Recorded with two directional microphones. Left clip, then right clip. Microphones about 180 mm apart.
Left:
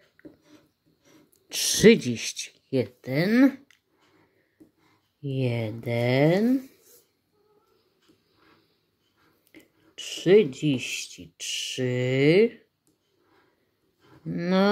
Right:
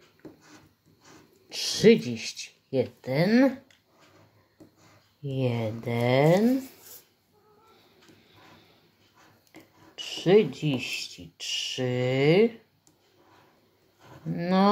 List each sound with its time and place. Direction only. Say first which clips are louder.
1.9 s speech: left 2 dB; 45° left (ahead or behind)
5.2 s speech: even; 35° left (ahead or behind)
9.5 s speech: right 1 dB; 40° left (ahead or behind)
14.3 s speech: left 1 dB; 40° left (ahead or behind)